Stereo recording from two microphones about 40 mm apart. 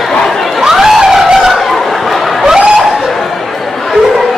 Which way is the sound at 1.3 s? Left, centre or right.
Centre.